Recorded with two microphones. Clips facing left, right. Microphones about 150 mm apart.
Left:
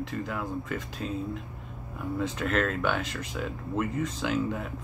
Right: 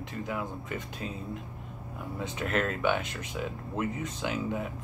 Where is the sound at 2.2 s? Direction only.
5° right (ahead or behind).